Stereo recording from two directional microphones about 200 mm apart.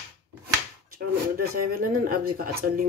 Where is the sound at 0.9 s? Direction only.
45° right (ahead or behind).